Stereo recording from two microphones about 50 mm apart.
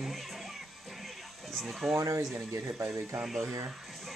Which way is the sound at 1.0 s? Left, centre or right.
Centre.